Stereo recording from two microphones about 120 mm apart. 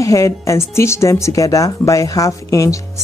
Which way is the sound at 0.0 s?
25° left (ahead or behind).